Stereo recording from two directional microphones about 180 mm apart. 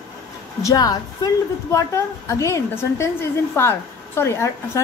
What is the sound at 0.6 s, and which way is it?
A woman's voice, 20° left (ahead or behind).